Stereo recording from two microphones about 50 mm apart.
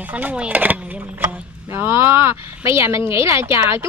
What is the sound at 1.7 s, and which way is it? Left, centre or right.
Speech, right.